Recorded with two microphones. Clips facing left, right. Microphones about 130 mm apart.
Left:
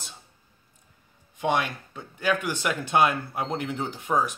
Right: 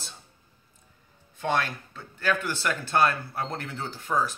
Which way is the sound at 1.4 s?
15° left (ahead or behind).